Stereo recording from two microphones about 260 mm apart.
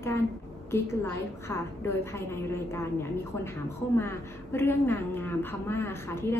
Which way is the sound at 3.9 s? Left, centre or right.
Centre.